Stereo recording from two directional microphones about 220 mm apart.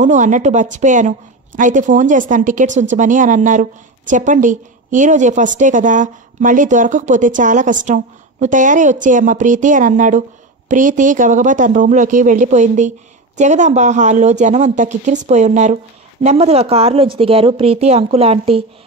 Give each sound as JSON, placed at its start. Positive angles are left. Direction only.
{"t": 0.0, "sound": "a woman's voice", "side_deg": -35}